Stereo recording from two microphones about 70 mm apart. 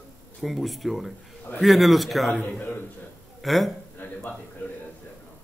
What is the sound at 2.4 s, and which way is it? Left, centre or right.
Speech, left.